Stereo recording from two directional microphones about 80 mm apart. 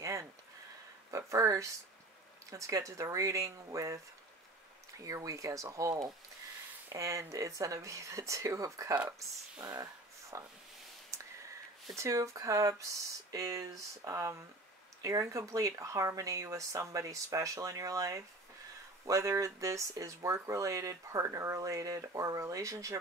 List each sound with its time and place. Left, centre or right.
1.1 s speech: right
11.1 s a sound: right
11.9 s speech: right